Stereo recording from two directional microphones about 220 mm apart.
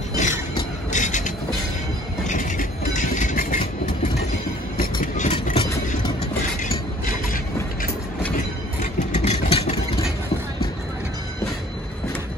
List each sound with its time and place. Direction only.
0.1 s train: 35° left (ahead or behind)
0.9 s vehicle: 35° left (ahead or behind)
2.2 s train: 35° left (ahead or behind)
5.1 s vehicle: 30° left (ahead or behind)
6.6 s a sound: 40° left (ahead or behind)
9.1 s vehicle: 30° left (ahead or behind)